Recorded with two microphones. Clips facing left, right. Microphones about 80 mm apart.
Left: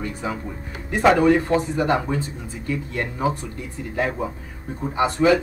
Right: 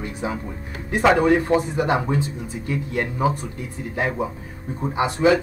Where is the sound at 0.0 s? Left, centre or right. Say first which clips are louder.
Even; right.